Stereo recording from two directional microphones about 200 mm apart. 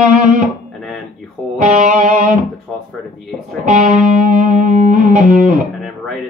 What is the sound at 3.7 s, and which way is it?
Music, 40° right (ahead or behind).